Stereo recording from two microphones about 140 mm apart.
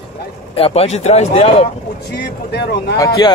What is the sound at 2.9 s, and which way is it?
Speech, 25° left (ahead or behind).